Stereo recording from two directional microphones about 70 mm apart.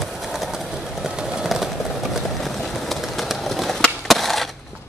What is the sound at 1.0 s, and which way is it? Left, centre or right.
Train, centre.